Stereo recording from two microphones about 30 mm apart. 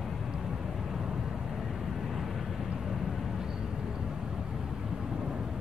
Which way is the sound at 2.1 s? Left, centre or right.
Centre.